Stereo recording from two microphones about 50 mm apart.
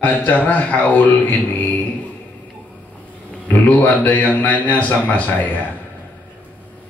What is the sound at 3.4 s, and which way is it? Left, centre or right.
A man's voice, left.